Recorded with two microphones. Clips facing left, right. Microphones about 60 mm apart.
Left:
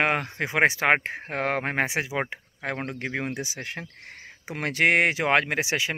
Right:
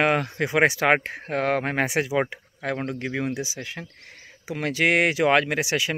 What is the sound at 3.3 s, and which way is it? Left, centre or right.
Speech, left.